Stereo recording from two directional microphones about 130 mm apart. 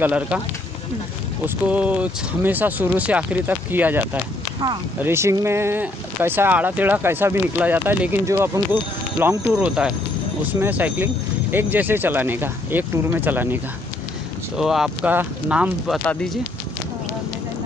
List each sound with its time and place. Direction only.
0.0 s speech: 10° right (ahead or behind)
1.4 s speech: 10° right (ahead or behind)
9.5 s speech: 10° right (ahead or behind)
14.6 s speech: centre (ahead or behind)